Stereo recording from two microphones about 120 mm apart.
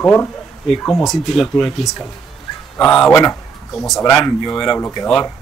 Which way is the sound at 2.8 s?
5° left (ahead or behind).